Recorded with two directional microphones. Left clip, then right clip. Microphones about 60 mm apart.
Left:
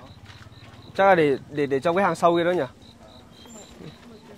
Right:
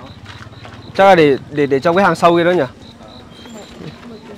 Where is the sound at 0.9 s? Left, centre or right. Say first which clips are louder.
Right 9 dB; left.